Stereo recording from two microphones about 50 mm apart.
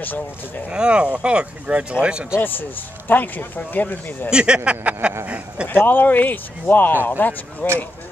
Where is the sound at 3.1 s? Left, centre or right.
Left.